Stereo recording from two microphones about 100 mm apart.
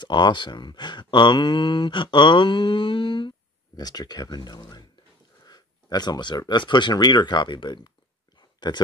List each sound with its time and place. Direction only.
0.0 s speech: 50° left (ahead or behind)
3.7 s speech: 40° left (ahead or behind)
8.4 s a sound: 50° left (ahead or behind)